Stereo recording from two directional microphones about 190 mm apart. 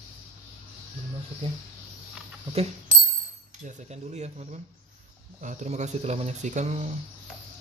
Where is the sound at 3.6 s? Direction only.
35° right (ahead or behind).